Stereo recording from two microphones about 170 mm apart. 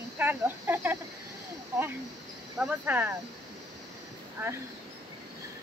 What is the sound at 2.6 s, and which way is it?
Speech, 10° right (ahead or behind).